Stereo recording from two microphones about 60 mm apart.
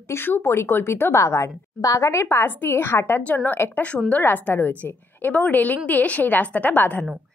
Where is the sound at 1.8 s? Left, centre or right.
Left.